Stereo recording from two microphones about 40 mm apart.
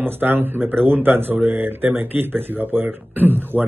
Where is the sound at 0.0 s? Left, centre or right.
Right.